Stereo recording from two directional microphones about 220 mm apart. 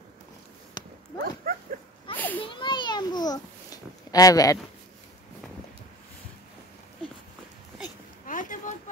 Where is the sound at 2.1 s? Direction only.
10° left (ahead or behind).